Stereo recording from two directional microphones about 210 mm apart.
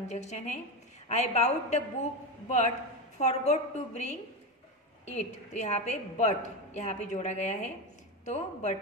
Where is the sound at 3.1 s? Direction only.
35° left (ahead or behind).